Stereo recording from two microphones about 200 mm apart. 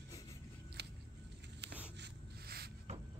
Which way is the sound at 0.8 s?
55° right (ahead or behind).